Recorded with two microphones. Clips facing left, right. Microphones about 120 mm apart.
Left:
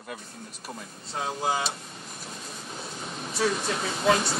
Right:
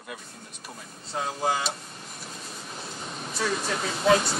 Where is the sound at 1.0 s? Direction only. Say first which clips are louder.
Right 2 dB; centre (ahead or behind).